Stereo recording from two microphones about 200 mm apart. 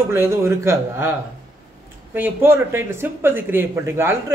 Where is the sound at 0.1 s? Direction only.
15° right (ahead or behind).